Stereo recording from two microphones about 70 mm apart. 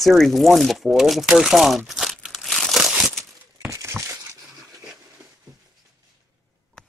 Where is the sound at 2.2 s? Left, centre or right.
Centre.